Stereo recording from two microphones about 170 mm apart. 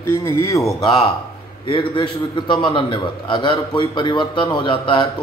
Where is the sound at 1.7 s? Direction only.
30° left (ahead or behind).